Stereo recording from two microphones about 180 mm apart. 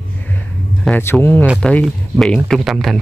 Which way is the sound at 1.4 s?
5° right (ahead or behind).